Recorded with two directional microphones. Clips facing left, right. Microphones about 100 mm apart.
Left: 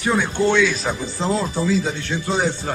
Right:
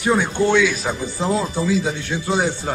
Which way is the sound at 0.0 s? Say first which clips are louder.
Right 1 dB; 15° right (ahead or behind).